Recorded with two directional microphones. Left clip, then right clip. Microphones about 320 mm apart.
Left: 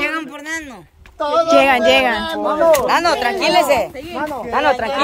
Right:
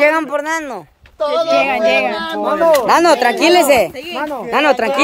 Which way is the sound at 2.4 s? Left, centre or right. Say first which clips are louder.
Right 3 dB; right.